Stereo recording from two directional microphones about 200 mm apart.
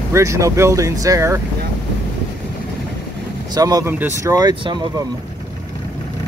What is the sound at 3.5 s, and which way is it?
Speech, 20° right (ahead or behind).